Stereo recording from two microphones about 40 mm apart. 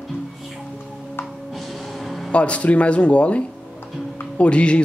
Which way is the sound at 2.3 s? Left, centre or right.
Left.